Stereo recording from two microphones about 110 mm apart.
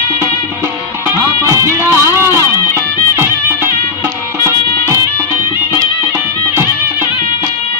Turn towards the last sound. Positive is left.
turn(degrees=-25)  # may be behind; listen again after turning